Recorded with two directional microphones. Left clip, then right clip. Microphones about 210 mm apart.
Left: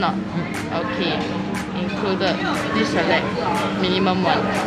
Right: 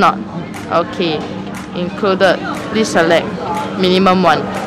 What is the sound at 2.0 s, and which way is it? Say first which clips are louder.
Speech: right 9 dB; 65° right (ahead or behind).